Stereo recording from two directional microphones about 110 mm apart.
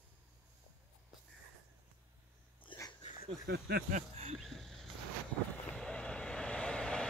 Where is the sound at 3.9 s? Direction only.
75° right (ahead or behind).